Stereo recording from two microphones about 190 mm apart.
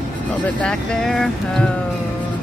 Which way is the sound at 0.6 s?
5° left (ahead or behind).